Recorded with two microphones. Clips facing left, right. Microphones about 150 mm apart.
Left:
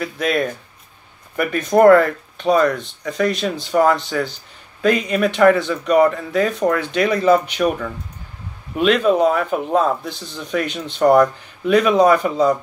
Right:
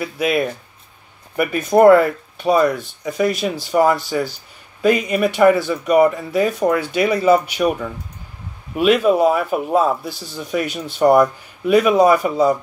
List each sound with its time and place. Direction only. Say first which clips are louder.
0.0 s speech: right 1 dB; 5° right (ahead or behind)